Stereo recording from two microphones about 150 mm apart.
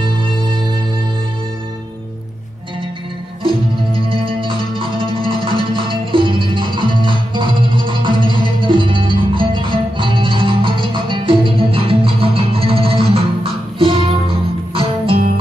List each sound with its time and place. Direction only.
3.4 s music: 35° right (ahead or behind)